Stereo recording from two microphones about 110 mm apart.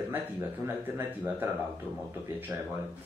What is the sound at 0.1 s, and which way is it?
Speech, 15° right (ahead or behind).